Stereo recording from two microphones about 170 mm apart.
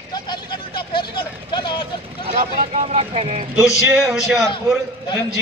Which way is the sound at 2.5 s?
45° right (ahead or behind).